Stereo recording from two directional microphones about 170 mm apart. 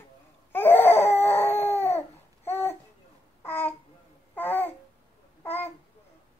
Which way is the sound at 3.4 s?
10° left (ahead or behind).